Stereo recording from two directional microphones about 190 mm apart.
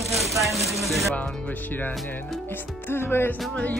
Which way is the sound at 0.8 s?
Centre (ahead or behind).